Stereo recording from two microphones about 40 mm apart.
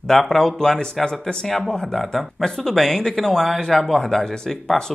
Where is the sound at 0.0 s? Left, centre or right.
Centre.